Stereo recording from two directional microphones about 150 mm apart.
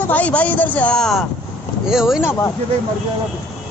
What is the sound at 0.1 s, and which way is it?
Speech, 10° left (ahead or behind).